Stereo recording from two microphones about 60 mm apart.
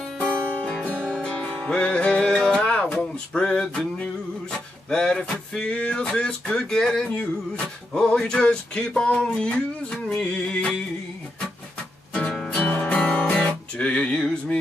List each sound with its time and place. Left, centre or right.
1.1 s music: centre
4.0 s male singing: centre
5.6 s a sound: left
12.5 s music: left